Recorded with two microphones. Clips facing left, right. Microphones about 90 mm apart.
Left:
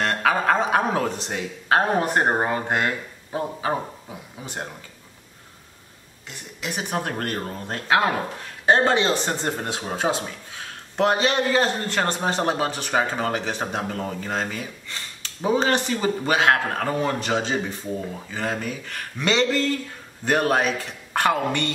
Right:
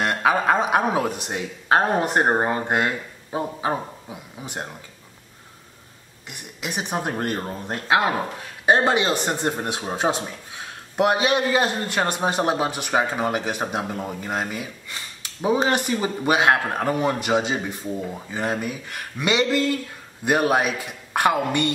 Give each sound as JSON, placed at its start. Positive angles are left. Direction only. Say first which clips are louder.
{"t": 0.0, "sound": "speech", "louder": "right 1 dB", "side_deg": -15}
{"t": 6.2, "sound": "speech", "louder": "even", "side_deg": -15}